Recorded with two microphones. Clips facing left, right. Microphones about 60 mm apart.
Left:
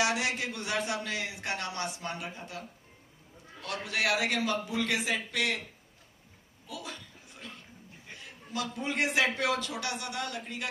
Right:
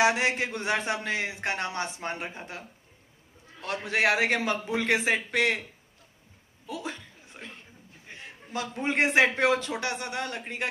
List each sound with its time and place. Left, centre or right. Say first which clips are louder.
0.0 s a man's voice: right 5 dB; right
3.6 s a man's voice: right 5 dB; right
6.7 s a sound: right 6 dB; right
8.1 s a man's voice: right 3 dB; right